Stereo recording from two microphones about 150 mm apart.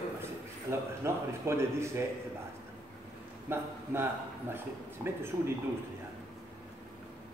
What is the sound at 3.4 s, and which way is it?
Speech, 15° right (ahead or behind).